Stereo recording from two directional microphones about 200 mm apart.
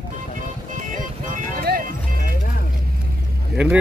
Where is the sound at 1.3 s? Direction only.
45° right (ahead or behind).